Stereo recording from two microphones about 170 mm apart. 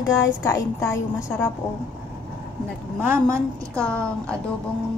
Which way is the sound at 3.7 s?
5° left (ahead or behind).